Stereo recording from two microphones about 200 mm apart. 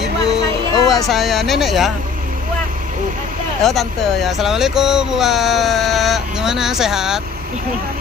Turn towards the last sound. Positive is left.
turn(degrees=0)  # may be behind; listen again after turning